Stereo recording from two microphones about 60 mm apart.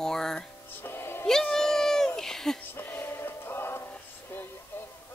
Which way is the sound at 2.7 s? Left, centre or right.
Left.